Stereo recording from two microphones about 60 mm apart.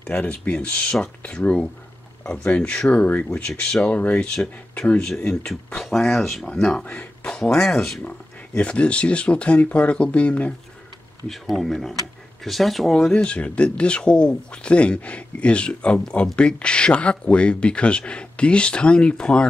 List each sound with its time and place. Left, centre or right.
0.1 s speech: centre
6.4 s speech: centre
6.8 s speech: left; by 8.0 s centre
8.5 s speech: centre
11.2 s speech: centre
13.1 s speech: centre